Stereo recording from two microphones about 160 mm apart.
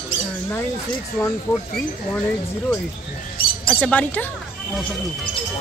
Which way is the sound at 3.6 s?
10° left (ahead or behind).